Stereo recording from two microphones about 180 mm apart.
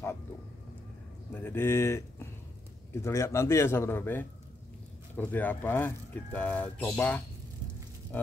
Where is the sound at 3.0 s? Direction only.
15° left (ahead or behind).